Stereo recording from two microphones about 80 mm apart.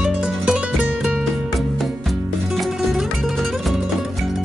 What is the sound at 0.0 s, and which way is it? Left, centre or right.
Music, centre.